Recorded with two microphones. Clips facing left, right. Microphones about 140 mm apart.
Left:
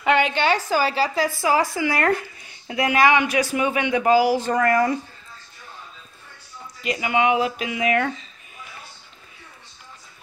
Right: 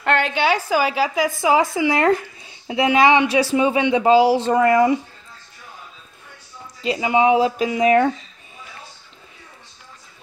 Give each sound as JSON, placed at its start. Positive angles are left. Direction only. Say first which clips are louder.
{"t": 0.0, "sound": "a sound", "louder": "left 1 dB", "side_deg": 0}
{"t": 0.4, "sound": "speech", "louder": "right 2 dB", "side_deg": -10}
{"t": 6.8, "sound": "speech", "louder": "right 4 dB", "side_deg": -30}